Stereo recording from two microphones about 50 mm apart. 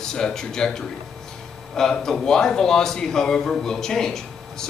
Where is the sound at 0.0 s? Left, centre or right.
Centre.